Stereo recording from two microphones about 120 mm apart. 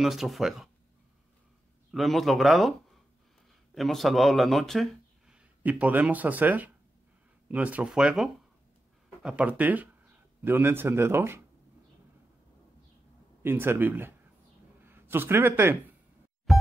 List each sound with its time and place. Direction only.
0.0 s speech: centre (ahead or behind)
1.9 s speech: centre (ahead or behind)
5.3 s speech: 10° right (ahead or behind)
13.4 s speech: 20° right (ahead or behind)
16.5 s music: centre (ahead or behind)